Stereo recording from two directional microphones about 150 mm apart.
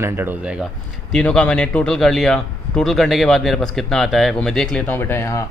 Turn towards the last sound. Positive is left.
turn(degrees=20)  # may be behind; listen again after turning